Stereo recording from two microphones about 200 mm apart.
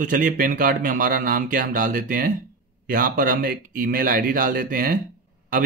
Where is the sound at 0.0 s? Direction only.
40° right (ahead or behind).